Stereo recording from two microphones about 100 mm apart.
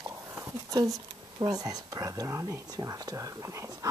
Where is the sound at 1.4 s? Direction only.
40° right (ahead or behind).